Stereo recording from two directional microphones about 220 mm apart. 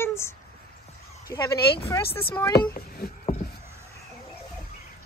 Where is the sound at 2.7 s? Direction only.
45° left (ahead or behind).